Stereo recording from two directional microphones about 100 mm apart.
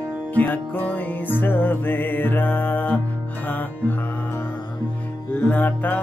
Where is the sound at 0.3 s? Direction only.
15° left (ahead or behind).